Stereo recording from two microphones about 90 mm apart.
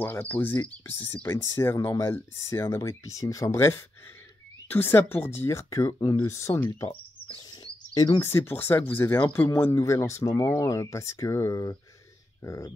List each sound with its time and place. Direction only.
0.0 s speech: 20° left (ahead or behind); by 6.2 s 45° left (ahead or behind)
6.2 s speech: 35° left (ahead or behind)
6.9 s a sound: 80° left
7.9 s speech: 50° left (ahead or behind)
8.2 s speech: 30° left (ahead or behind)